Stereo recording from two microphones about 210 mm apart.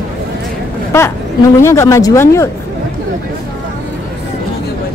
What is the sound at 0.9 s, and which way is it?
Speech, 10° left (ahead or behind).